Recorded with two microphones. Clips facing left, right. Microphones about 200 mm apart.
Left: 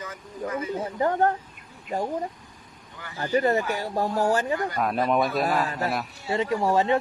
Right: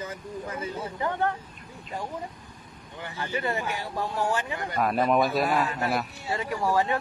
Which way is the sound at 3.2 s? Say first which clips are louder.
Left 7 dB; 40° left (ahead or behind).